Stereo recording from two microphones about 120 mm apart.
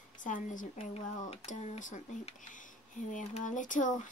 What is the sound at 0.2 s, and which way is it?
Speech, 90° left.